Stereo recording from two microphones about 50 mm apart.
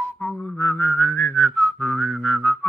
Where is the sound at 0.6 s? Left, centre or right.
Left.